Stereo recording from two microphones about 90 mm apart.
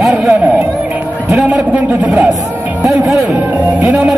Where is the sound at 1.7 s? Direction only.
15° right (ahead or behind).